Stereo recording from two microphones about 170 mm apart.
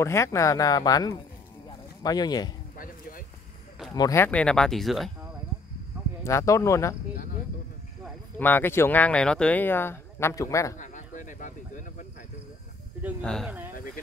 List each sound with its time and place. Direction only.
0.0 s speech: 15° left (ahead or behind)
2.8 s a sound: 55° left (ahead or behind)
3.9 s speech: 20° left (ahead or behind); by 5.1 s centre (ahead or behind)
6.2 s speech: 20° left (ahead or behind)
8.4 s speech: 10° left (ahead or behind)
10.8 s cricket: 50° left (ahead or behind)
13.2 s speech: 5° left (ahead or behind)
13.7 s speech: 55° left (ahead or behind)